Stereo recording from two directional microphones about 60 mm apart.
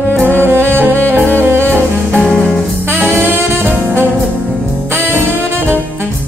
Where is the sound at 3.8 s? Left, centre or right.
Right.